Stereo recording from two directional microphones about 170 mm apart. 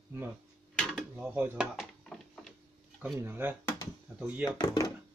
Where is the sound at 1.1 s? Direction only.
10° right (ahead or behind).